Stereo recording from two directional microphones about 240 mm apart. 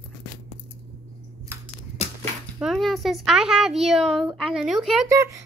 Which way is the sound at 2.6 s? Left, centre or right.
Centre.